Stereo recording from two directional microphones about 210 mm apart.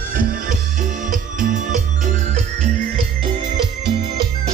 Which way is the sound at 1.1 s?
35° right (ahead or behind).